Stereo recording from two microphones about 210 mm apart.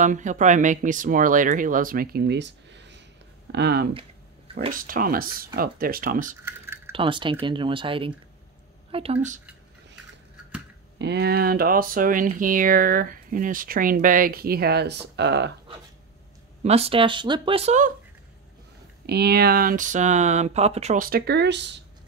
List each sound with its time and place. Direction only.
0.0 s speech: 35° right (ahead or behind)
6.4 s typing: 10° right (ahead or behind)
6.9 s speech: 25° right (ahead or behind)
11.0 s speech: 50° right (ahead or behind)
16.6 s speech: 30° right (ahead or behind)
19.0 s speech: 50° right (ahead or behind)